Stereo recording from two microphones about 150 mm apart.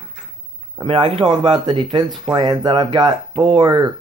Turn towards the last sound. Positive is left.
turn(degrees=-30)  # may be behind; listen again after turning